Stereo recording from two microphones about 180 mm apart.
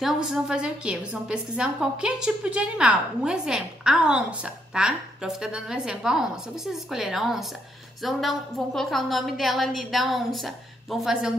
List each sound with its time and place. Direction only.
0.0 s a woman's voice: 5° right (ahead or behind)